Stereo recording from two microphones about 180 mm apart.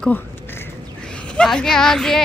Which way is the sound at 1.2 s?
5° left (ahead or behind).